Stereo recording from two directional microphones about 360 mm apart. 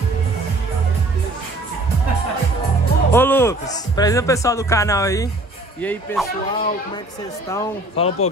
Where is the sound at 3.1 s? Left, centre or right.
Centre.